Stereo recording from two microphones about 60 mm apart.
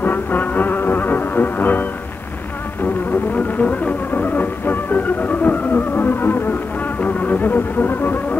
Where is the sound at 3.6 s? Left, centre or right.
Left.